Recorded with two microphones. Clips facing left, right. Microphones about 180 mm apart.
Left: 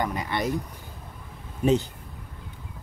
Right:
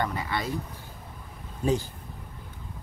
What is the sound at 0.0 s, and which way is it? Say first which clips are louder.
Speech: left 2 dB; 15° left (ahead or behind).